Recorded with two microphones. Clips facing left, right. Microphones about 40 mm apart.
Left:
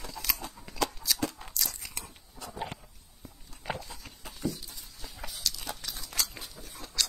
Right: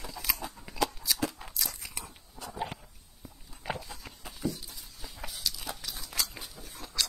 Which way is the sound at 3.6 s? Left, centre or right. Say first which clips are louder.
Even; centre.